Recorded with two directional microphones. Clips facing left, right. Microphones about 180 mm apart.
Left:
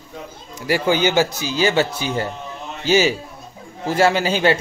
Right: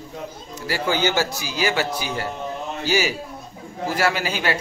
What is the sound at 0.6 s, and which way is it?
A man's voice, 15° left (ahead or behind).